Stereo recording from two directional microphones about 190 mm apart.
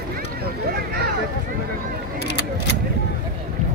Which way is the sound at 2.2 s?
60° left (ahead or behind).